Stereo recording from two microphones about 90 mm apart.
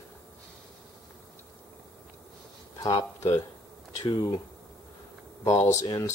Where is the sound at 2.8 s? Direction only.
45° left (ahead or behind).